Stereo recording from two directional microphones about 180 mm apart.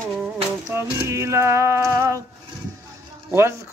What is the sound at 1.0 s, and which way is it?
Speech, 15° right (ahead or behind).